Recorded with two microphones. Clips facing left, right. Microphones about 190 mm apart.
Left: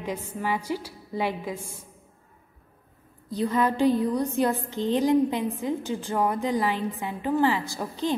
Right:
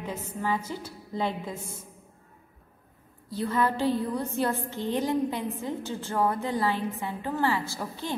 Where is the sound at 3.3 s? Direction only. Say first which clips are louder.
Left 3 dB; 15° left (ahead or behind).